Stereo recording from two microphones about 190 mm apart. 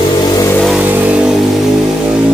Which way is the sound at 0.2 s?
20° left (ahead or behind).